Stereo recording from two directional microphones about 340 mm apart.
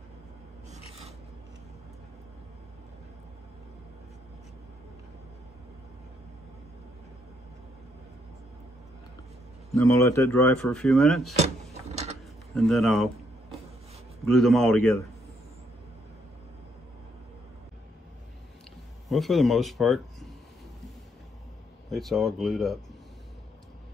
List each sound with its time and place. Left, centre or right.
9.8 s speech: centre
11.3 s vehicle: centre
12.5 s speech: centre
14.2 s speech: centre
19.0 s speech: centre
21.9 s speech: centre